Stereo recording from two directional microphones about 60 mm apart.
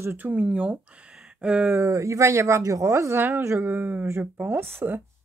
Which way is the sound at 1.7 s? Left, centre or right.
Right.